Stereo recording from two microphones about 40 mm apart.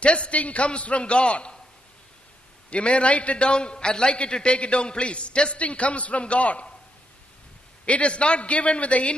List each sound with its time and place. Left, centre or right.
0.0 s a man's voice: left
2.7 s a man's voice: left
7.8 s a man's voice: left